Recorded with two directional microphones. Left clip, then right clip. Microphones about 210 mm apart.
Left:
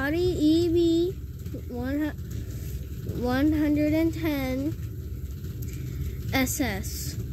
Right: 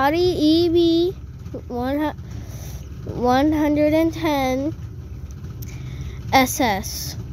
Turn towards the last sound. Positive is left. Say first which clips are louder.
# right 10 dB
turn(degrees=-20)  # may be behind; listen again after turning